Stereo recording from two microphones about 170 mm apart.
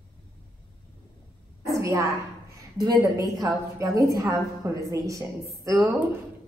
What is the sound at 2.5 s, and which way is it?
A woman's voice, 20° right (ahead or behind).